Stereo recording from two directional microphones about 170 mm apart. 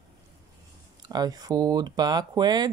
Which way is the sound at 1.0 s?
25° right (ahead or behind).